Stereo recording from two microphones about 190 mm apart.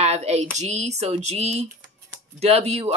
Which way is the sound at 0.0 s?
35° right (ahead or behind).